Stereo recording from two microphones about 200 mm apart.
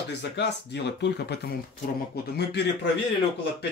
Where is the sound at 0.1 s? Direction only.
60° left (ahead or behind).